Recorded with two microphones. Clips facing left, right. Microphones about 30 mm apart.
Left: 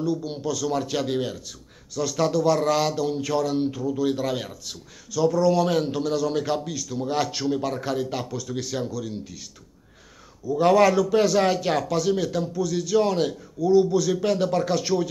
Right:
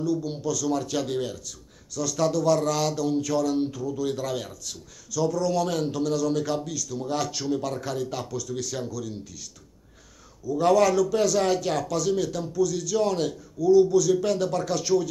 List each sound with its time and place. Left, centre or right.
0.0 s speech: left
10.4 s speech: left